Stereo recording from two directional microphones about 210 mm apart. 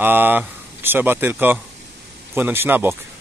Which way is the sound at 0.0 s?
10° right (ahead or behind).